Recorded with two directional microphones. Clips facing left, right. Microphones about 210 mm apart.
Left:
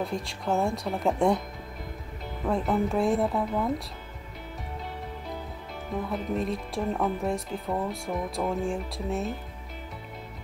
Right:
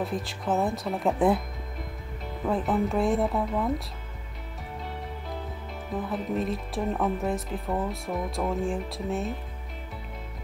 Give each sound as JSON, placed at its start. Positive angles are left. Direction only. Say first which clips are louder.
{"t": 0.0, "sound": "speech", "louder": "right 1 dB", "side_deg": 0}
{"t": 2.4, "sound": "speech", "louder": "even", "side_deg": 0}
{"t": 6.0, "sound": "speech", "louder": "right 1 dB", "side_deg": 0}